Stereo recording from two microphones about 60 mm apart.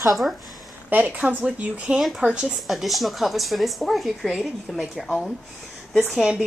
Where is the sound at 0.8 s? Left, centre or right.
Right.